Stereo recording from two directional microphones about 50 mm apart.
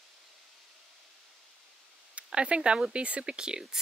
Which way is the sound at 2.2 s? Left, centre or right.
Right.